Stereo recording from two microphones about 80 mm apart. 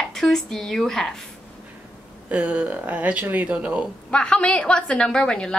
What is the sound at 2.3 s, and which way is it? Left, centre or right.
Speech, centre.